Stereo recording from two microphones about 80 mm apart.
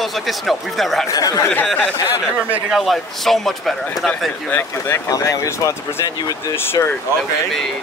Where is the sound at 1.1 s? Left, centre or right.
Left.